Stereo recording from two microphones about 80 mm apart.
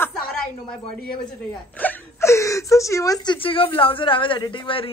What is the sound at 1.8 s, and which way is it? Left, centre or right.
Whimper, centre.